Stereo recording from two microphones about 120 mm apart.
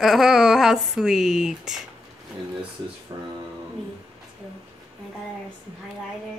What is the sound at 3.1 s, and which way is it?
Speech, 35° right (ahead or behind).